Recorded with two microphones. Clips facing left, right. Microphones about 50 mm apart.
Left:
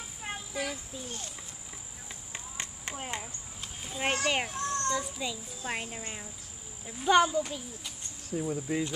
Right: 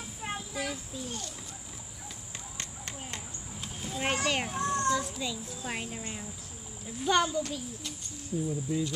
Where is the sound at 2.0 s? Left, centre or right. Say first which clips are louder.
Left 1 dB; left.